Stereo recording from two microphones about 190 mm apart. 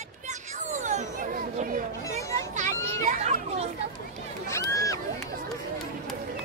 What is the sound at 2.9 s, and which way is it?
Children playing, 40° right (ahead or behind).